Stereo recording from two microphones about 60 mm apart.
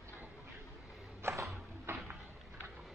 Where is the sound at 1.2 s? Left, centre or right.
Right.